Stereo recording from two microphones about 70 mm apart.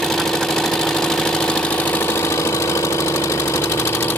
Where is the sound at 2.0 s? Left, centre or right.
Left.